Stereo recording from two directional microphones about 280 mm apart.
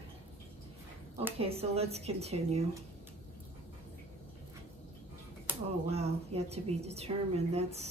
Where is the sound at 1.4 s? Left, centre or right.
Right.